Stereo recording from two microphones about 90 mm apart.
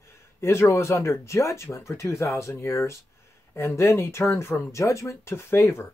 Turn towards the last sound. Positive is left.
turn(degrees=30)  # may be behind; listen again after turning